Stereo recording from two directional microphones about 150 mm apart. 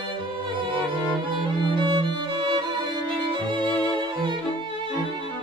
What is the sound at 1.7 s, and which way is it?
Music, 35° right (ahead or behind).